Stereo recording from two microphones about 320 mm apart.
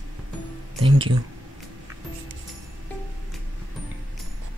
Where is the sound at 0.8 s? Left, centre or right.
Centre.